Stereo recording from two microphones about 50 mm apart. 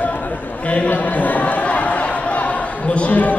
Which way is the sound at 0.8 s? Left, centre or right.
Left.